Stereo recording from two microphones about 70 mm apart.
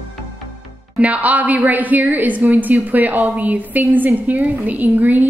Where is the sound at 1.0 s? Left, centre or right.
Right.